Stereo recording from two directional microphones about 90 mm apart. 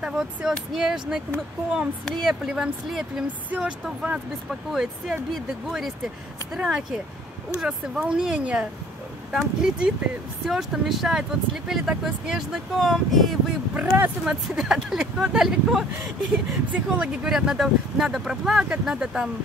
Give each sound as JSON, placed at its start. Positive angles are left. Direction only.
{"t": 0.0, "sound": "speech", "side_deg": -10}
{"t": 3.3, "sound": "speech", "side_deg": -15}
{"t": 13.7, "sound": "speech", "side_deg": -15}
{"t": 14.5, "sound": "speech", "side_deg": -5}